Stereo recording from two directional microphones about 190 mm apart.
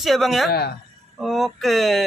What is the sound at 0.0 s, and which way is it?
Speech, centre (ahead or behind).